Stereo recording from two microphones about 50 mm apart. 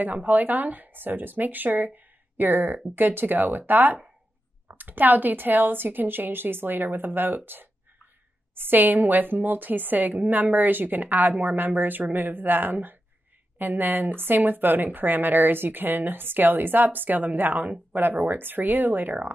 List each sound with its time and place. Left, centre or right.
0.0 s a woman's voice: right